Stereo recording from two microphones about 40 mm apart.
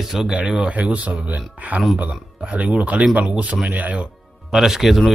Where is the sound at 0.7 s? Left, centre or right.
Right.